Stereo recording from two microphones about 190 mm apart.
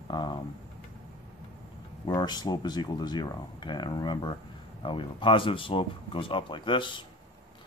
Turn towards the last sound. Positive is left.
turn(degrees=25)  # may be behind; listen again after turning